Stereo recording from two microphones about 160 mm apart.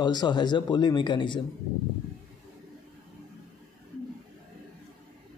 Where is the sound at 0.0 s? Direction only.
25° left (ahead or behind).